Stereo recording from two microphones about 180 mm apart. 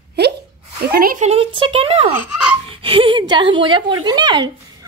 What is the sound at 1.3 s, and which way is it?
Speech, 30° right (ahead or behind).